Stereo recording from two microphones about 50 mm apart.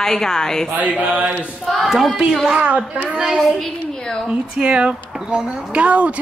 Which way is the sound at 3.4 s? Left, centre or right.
Centre.